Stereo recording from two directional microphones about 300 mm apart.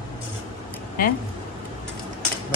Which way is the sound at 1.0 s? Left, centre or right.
Left.